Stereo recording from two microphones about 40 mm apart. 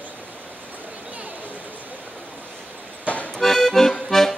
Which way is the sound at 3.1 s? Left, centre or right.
Left.